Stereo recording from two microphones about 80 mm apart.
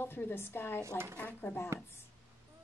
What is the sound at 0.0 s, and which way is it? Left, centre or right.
Speech, left.